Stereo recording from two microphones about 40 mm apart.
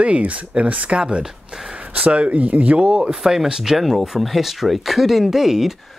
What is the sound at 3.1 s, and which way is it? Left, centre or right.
Speech, centre.